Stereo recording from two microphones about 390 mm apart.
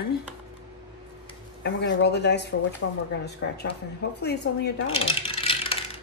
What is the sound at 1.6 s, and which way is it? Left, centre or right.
A woman's voice, left.